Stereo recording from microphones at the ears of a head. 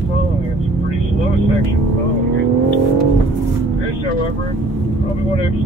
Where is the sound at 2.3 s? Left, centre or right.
Right.